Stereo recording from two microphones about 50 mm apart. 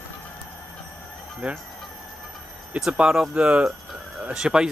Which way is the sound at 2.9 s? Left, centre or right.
Centre.